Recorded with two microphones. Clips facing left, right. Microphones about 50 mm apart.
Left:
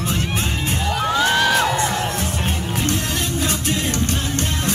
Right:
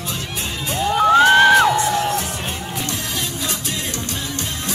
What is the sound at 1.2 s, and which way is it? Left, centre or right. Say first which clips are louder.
Music: right 5 dB; right.